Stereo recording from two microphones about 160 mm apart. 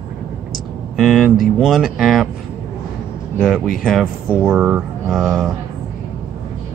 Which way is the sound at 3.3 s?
5° left (ahead or behind).